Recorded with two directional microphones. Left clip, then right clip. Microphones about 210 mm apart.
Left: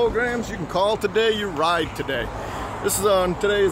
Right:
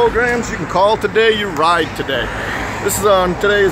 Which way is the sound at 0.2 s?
40° left (ahead or behind).